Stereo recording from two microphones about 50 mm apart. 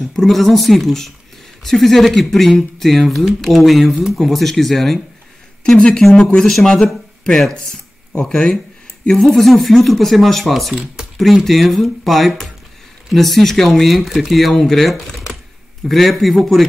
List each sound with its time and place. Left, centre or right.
0.0 s speech: centre
5.6 s speech: centre
8.3 s speech: centre